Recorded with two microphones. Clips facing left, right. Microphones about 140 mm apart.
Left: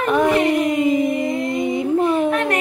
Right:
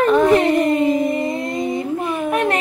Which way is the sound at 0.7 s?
10° left (ahead or behind).